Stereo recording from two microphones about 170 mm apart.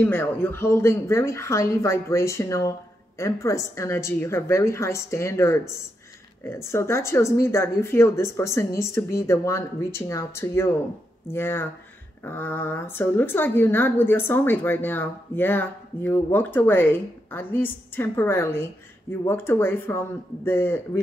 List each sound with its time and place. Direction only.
0.0 s a woman's voice: 15° left (ahead or behind)